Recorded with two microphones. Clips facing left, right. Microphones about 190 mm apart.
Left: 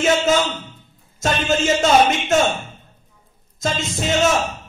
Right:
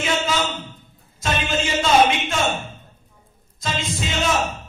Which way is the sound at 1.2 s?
45° left (ahead or behind).